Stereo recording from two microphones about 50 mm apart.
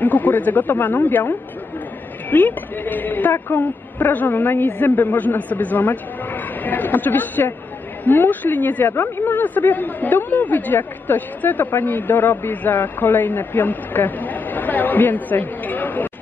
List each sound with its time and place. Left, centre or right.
0.0 s speech: left
3.3 s speech: left